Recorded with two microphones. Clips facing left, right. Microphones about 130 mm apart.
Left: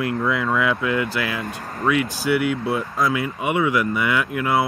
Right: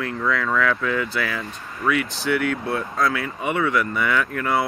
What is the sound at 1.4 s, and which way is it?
Speech, 45° left (ahead or behind).